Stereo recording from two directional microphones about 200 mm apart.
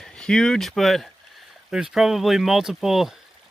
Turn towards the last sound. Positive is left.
turn(degrees=0)  # may be behind; listen again after turning